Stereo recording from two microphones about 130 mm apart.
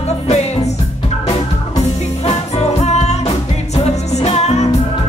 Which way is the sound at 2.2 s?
55° left (ahead or behind).